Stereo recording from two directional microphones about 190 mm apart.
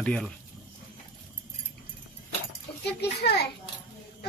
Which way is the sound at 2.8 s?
60° left (ahead or behind).